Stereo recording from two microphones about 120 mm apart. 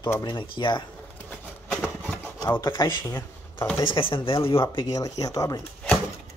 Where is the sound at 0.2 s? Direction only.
40° left (ahead or behind).